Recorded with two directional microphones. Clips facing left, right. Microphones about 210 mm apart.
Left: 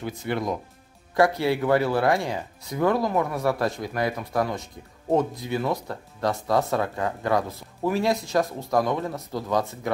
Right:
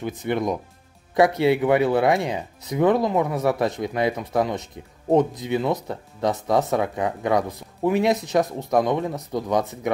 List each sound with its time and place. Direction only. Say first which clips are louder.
0.0 s speech: right 4 dB; 20° right (ahead or behind)